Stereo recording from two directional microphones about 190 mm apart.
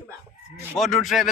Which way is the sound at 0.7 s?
Centre (ahead or behind).